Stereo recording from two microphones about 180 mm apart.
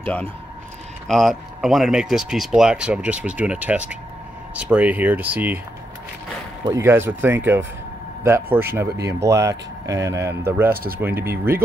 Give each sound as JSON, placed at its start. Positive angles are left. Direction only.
{"t": 1.0, "sound": "speech", "side_deg": 0}
{"t": 6.6, "sound": "speech", "side_deg": -15}